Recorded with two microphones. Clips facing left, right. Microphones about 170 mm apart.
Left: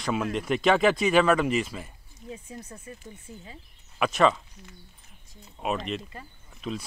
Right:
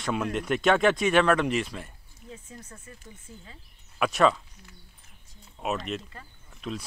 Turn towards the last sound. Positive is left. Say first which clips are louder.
# left 1 dB
turn(degrees=0)  # may be behind; listen again after turning